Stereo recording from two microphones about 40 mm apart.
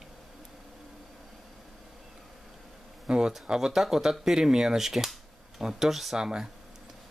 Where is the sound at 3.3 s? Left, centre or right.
Centre.